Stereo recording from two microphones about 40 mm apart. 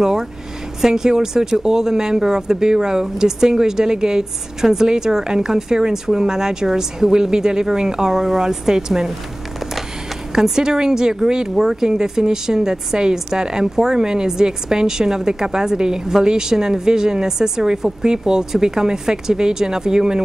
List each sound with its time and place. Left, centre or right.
0.0 s speech: centre
10.3 s speech: centre